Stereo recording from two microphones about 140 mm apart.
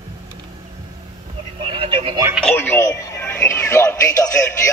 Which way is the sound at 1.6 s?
40° right (ahead or behind).